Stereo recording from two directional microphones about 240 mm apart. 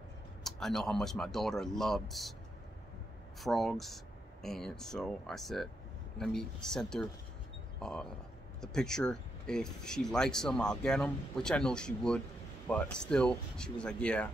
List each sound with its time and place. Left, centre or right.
0.4 s speech: centre
3.3 s speech: centre